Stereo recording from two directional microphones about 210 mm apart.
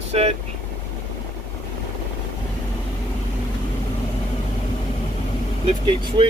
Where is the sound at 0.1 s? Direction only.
30° right (ahead or behind).